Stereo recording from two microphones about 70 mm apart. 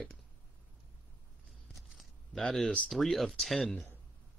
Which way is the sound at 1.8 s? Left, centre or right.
Centre.